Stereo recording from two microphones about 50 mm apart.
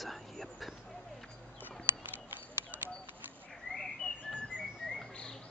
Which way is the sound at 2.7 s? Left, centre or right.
Right.